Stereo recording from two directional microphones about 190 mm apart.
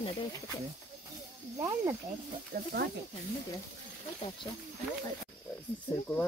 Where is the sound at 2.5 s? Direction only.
60° right (ahead or behind).